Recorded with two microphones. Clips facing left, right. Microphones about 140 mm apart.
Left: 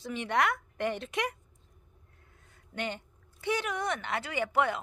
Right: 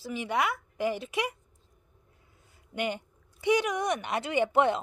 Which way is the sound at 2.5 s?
10° right (ahead or behind).